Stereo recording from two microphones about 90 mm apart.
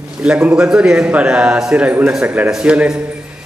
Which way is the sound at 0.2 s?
15° right (ahead or behind).